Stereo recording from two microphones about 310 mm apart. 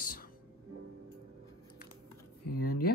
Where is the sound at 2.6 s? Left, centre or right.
Left.